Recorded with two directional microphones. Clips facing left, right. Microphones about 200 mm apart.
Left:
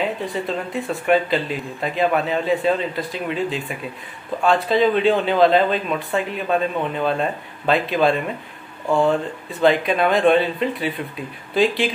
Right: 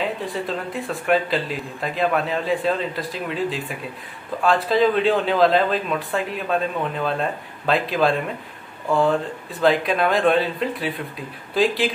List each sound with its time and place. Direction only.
0.2 s speech: centre (ahead or behind)